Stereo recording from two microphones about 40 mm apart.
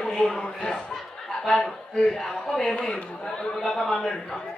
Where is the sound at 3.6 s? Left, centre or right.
Centre.